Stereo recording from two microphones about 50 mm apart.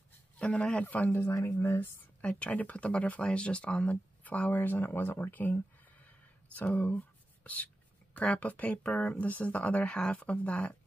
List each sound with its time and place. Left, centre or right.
0.4 s speech: left
2.2 s speech: left
5.3 s speech: left
9.2 s speech: left
9.8 s speech: centre